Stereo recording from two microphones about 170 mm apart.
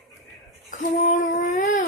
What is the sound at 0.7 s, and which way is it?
Female singing, 50° left (ahead or behind).